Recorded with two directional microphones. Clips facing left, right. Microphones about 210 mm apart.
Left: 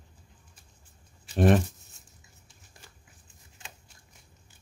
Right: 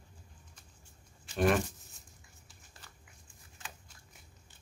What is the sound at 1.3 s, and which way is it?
Speech, 35° left (ahead or behind).